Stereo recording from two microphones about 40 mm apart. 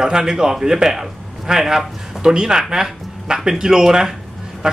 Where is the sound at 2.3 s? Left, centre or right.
Right.